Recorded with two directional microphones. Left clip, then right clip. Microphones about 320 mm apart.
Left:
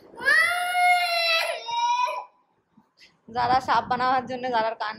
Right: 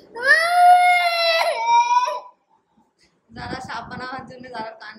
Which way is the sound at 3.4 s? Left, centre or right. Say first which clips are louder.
Left 9 dB; centre.